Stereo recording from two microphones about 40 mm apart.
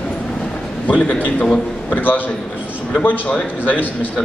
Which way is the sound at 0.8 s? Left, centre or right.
Left.